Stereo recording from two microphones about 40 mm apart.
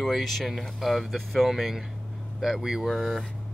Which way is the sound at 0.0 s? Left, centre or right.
Centre.